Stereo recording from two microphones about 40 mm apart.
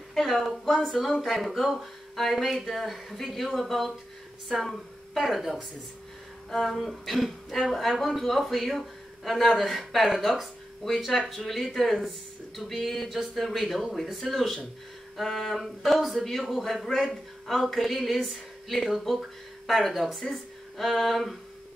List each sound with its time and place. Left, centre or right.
0.1 s a man's voice: centre